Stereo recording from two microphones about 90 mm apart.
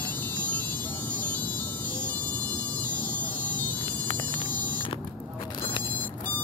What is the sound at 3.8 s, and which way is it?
Hum, 80° left.